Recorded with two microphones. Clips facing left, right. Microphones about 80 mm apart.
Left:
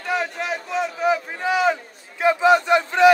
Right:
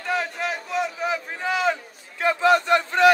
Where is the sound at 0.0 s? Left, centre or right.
Centre.